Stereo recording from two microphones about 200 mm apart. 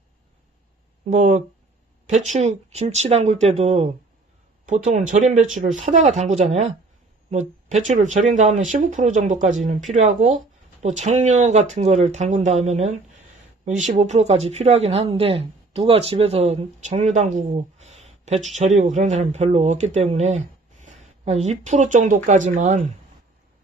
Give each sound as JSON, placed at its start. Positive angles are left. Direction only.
{"t": 1.1, "sound": "speech", "side_deg": -35}